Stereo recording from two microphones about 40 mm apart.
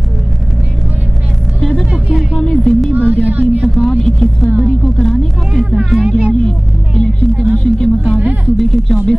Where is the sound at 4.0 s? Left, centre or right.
Centre.